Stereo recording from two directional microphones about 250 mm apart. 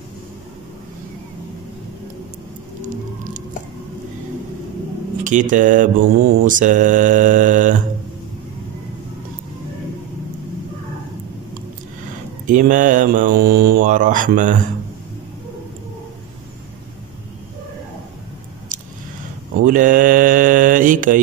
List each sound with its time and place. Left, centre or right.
5.2 s mantra: right
12.4 s mantra: right
18.7 s a sound: right
19.6 s mantra: right